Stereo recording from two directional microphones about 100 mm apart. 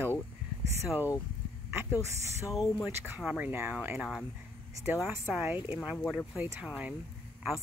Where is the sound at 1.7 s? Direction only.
25° right (ahead or behind).